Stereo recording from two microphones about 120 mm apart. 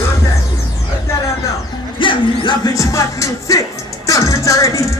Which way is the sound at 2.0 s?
45° left (ahead or behind).